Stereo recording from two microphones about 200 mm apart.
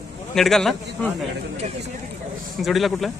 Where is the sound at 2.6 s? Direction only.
Centre (ahead or behind).